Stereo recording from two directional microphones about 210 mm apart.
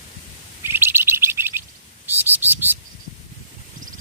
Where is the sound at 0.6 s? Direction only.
10° right (ahead or behind).